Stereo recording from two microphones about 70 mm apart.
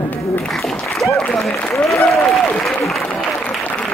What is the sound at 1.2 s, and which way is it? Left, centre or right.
Speech, centre.